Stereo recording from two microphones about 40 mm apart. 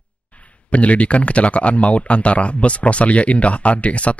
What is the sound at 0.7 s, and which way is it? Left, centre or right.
Speech, left.